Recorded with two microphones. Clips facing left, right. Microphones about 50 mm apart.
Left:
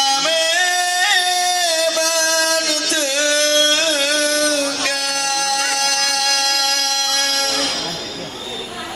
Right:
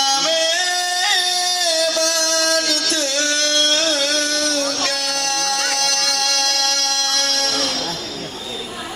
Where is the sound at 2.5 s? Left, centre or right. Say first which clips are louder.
Even; centre.